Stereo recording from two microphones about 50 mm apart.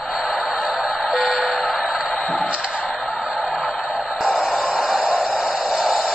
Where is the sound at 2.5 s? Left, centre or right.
Centre.